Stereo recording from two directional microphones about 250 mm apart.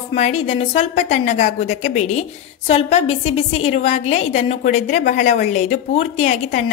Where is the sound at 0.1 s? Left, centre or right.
Left.